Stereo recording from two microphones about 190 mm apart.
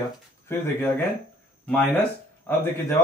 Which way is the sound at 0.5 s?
10° left (ahead or behind).